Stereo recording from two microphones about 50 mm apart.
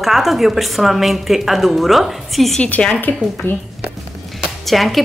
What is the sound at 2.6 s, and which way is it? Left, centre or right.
Speech, left.